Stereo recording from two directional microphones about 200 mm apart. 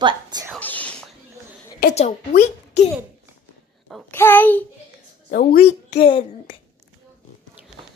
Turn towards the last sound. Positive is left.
turn(degrees=45)  # may be behind; listen again after turning